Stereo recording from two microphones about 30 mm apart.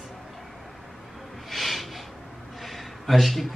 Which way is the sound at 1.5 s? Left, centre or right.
Centre.